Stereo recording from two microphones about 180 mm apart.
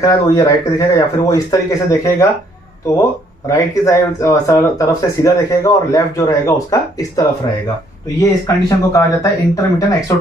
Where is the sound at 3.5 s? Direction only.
20° left (ahead or behind).